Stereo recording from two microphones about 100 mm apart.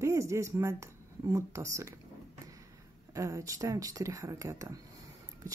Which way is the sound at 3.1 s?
30° right (ahead or behind).